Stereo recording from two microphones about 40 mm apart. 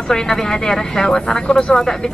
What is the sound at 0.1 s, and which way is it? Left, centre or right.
Speech, centre.